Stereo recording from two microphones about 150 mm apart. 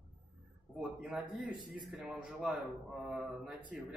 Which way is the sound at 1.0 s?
5° right (ahead or behind).